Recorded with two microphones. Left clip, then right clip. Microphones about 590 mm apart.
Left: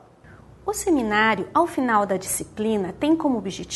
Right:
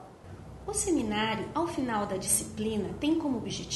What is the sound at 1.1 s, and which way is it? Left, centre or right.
A woman's voice, left.